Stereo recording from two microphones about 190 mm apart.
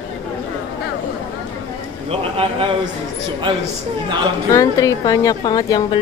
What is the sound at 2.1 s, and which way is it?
Speech, 30° right (ahead or behind).